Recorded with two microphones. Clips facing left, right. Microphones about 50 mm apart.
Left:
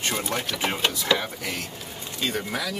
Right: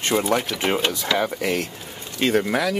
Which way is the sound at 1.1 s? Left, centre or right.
Right.